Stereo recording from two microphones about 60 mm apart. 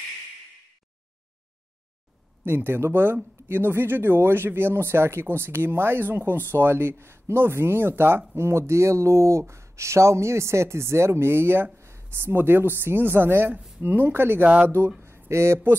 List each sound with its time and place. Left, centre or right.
2.4 s speech: right
8.4 s speech: right
15.0 s a sound: right